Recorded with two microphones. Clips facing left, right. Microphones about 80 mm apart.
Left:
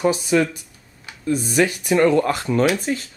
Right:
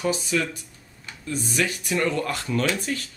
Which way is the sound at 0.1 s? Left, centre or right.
Left.